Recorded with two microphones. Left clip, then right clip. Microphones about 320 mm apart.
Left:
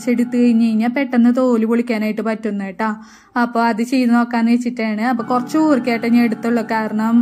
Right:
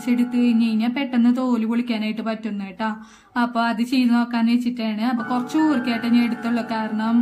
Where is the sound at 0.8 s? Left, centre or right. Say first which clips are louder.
Left 5 dB; centre.